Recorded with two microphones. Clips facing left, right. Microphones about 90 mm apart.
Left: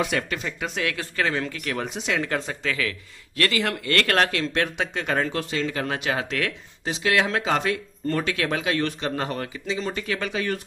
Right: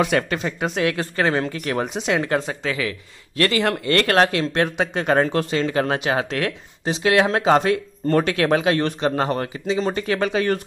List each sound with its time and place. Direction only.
0.1 s speech: 40° right (ahead or behind)
0.7 s speech: 25° right (ahead or behind)
0.9 s speech: 35° right (ahead or behind)
2.0 s speech: 20° right (ahead or behind)
3.3 s speech: 35° right (ahead or behind)
5.9 s speech: 30° right (ahead or behind)
8.2 s speech: 50° right (ahead or behind)
8.6 s speech: 40° right (ahead or behind)